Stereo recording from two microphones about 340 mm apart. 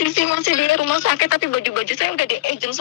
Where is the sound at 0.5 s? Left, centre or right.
Left.